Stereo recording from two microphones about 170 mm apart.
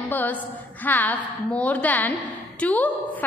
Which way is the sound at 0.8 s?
10° left (ahead or behind).